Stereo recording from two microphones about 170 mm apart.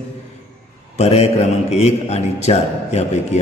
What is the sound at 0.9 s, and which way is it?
A man's voice, 40° left (ahead or behind).